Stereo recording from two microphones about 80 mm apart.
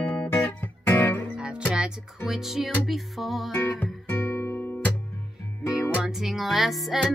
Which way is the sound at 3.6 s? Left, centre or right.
Left.